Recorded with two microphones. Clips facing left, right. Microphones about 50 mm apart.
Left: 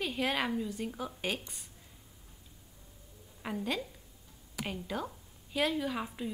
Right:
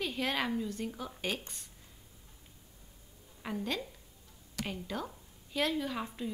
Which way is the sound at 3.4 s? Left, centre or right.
Centre.